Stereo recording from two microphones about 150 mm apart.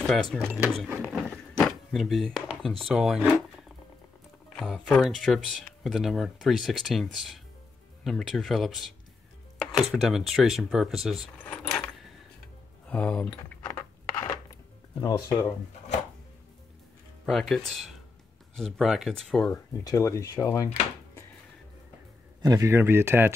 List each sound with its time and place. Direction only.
0.0 s speech: centre (ahead or behind)
1.1 s a sound: 5° left (ahead or behind)
4.6 s speech: centre (ahead or behind)
11.5 s keys jangling: 5° left (ahead or behind)
12.8 s a sound: 10° left (ahead or behind)
14.5 s music: 25° left (ahead or behind)
17.3 s speech: centre (ahead or behind)
19.8 s speech: 20° left (ahead or behind)
22.4 s speech: 20° right (ahead or behind)